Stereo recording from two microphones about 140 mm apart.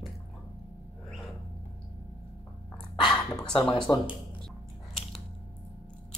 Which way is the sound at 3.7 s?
35° left (ahead or behind).